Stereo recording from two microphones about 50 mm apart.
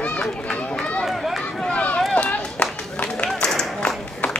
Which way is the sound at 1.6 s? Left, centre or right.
Left.